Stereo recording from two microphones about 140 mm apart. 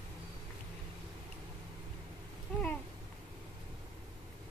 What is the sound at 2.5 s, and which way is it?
Babbling, 5° left (ahead or behind).